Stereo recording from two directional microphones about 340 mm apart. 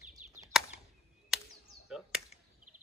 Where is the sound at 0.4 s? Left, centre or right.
Centre.